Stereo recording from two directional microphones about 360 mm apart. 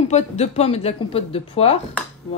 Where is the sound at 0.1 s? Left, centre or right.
Centre.